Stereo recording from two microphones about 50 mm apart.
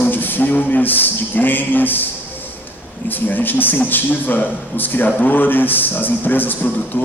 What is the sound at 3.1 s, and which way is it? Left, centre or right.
A man's voice, left.